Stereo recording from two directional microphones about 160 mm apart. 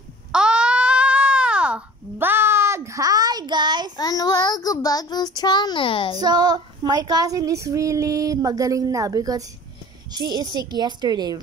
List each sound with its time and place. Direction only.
0.3 s a sound: 5° right (ahead or behind); by 3.9 s 25° right (ahead or behind)
3.9 s child singing: 25° left (ahead or behind)
6.1 s female singing: 25° right (ahead or behind)